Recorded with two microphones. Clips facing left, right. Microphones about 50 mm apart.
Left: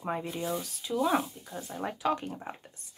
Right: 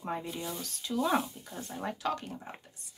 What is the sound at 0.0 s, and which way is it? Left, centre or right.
Speech, centre.